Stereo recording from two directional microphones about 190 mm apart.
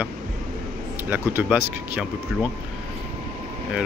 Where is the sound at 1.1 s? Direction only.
10° right (ahead or behind).